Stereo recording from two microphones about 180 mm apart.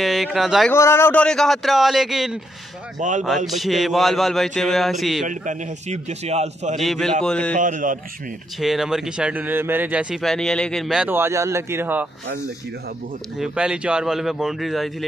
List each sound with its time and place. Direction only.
0.0 s speech: centre (ahead or behind)
0.7 s speech: 15° left (ahead or behind); by 2.4 s centre (ahead or behind)
3.0 s a man's voice: 45° right (ahead or behind)
3.4 s speech: centre (ahead or behind)
5.2 s a man's voice: 45° right (ahead or behind)
6.8 s speech: centre (ahead or behind)
7.5 s a man's voice: 45° right (ahead or behind)
8.5 s speech: centre (ahead or behind)
13.4 s speech: 5° right (ahead or behind)